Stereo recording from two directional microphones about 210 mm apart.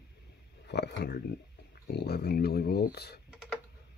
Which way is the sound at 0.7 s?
50° left (ahead or behind).